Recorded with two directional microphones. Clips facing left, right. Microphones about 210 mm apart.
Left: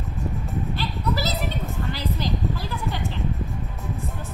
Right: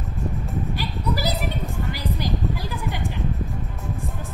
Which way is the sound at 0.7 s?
15° right (ahead or behind).